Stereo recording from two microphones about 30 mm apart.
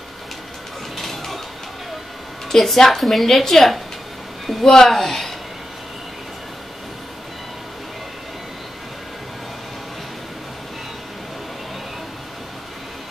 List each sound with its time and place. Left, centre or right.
0.9 s mechanisms: centre
2.5 s a woman's voice: centre